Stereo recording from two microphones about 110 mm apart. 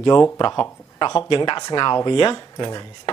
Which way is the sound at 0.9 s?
45° left (ahead or behind).